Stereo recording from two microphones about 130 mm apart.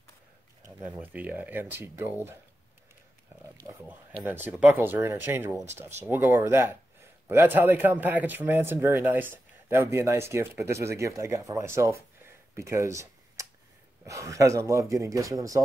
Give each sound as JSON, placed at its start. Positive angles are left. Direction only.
{"t": 0.8, "sound": "speech", "side_deg": -10}
{"t": 3.6, "sound": "speech", "side_deg": -35}
{"t": 4.3, "sound": "speech", "side_deg": -15}